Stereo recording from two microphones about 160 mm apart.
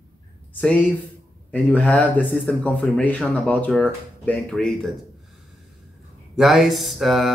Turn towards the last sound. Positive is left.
turn(degrees=0)  # may be behind; listen again after turning